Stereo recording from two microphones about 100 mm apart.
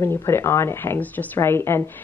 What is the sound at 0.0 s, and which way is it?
Speech, 25° left (ahead or behind).